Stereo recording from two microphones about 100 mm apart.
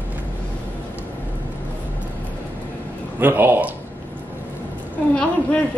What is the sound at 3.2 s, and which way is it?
Speech, 20° right (ahead or behind).